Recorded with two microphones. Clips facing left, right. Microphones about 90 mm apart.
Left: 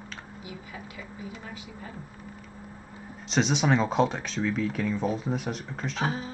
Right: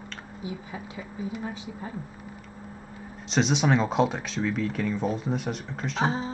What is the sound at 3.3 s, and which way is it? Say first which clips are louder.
Speech: right 1 dB; centre (ahead or behind).